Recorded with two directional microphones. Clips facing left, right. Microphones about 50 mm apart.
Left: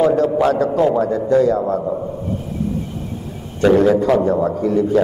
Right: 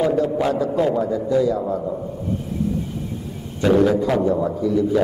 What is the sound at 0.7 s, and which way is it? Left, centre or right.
Speech, left.